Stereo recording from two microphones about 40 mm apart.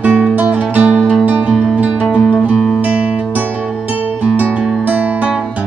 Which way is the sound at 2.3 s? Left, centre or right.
Right.